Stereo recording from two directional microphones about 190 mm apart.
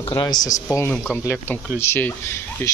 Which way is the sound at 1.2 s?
15° left (ahead or behind).